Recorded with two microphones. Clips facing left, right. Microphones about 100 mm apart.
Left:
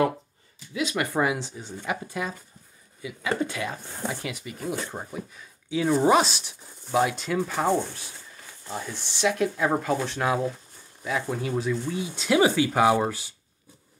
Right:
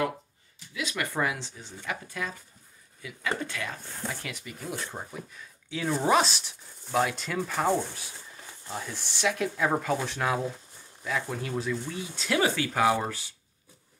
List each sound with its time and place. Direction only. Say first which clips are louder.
0.7 s speech: left 5 dB; 20° left (ahead or behind)